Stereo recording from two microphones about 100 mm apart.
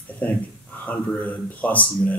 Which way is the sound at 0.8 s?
15° left (ahead or behind).